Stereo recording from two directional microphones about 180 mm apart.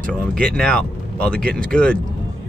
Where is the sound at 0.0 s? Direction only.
5° left (ahead or behind).